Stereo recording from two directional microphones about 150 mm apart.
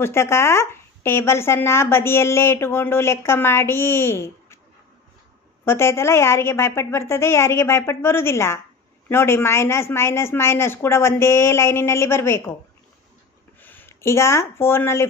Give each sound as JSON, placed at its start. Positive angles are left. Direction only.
{"t": 0.0, "sound": "speech", "side_deg": 15}
{"t": 5.7, "sound": "speech", "side_deg": 15}
{"t": 13.6, "sound": "speech", "side_deg": 15}